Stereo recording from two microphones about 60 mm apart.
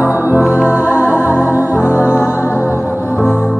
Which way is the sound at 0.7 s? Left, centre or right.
Right.